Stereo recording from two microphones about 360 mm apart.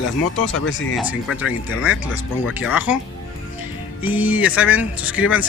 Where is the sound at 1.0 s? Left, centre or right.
Centre.